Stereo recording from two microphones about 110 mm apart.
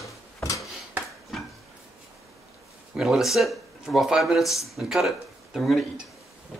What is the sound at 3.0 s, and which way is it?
Speech, centre (ahead or behind).